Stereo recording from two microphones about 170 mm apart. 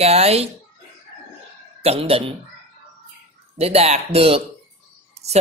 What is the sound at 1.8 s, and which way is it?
Speech, 35° right (ahead or behind).